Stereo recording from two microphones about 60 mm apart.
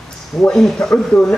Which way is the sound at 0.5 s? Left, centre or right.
Centre.